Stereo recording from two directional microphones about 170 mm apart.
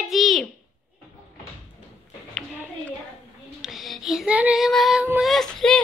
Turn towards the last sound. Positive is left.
turn(degrees=5)  # may be behind; listen again after turning